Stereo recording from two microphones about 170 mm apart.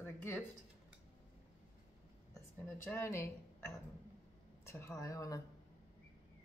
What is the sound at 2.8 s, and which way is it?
Speech, 15° left (ahead or behind).